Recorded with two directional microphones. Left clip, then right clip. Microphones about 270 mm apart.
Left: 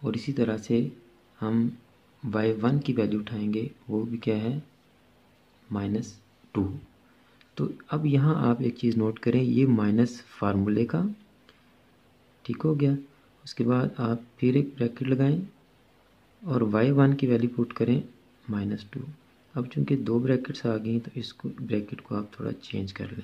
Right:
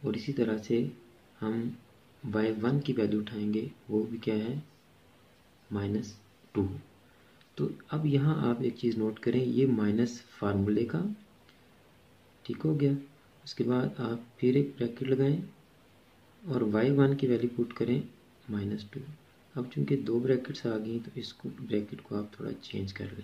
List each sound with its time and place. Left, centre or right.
0.0 s speech: left
5.7 s a sound: left
7.5 s speech: left
12.4 s speech: left
16.4 s speech: left